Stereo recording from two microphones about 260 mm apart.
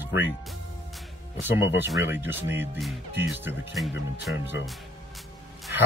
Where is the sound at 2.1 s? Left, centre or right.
Centre.